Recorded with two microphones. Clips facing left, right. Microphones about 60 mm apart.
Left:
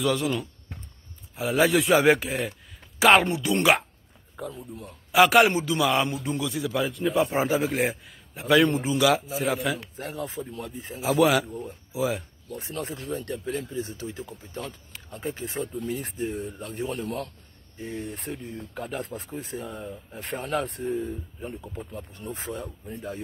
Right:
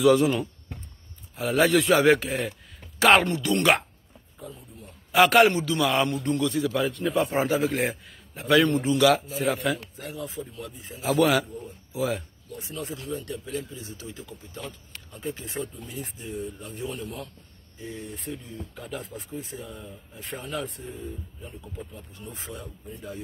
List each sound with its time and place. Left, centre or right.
0.1 s speech: centre
1.3 s a man's voice: centre
3.3 s a man's voice: centre
4.4 s a man's voice: left
5.1 s a man's voice: centre
5.5 s a man's voice: left
5.8 s a man's voice: centre
10.6 s speech: left
11.1 s a man's voice: centre
12.4 s speech: left
16.0 s a man's voice: left